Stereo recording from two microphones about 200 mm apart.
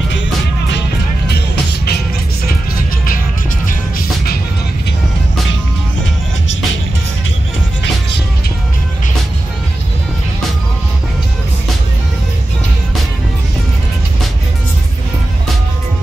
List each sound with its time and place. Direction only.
0.7 s music: 60° left (ahead or behind)